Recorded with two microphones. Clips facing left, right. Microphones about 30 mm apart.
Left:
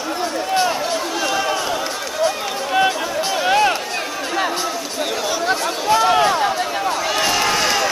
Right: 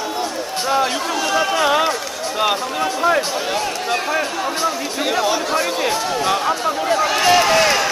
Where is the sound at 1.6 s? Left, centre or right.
Right.